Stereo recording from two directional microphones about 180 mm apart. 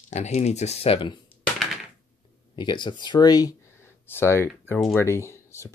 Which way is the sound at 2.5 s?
25° left (ahead or behind).